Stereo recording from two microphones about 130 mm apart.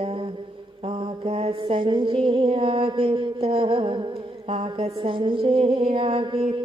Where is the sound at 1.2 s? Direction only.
50° right (ahead or behind).